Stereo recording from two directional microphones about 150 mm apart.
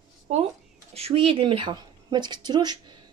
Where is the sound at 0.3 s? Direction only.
45° right (ahead or behind).